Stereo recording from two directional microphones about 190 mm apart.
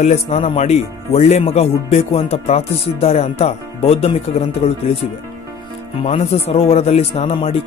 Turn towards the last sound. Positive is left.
turn(degrees=35)  # may be behind; listen again after turning